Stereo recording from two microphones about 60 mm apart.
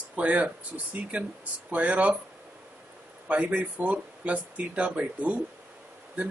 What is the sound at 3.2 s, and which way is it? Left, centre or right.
Speech, right.